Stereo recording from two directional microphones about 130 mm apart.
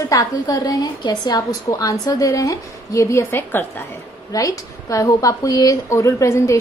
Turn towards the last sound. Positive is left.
turn(degrees=25)  # may be behind; listen again after turning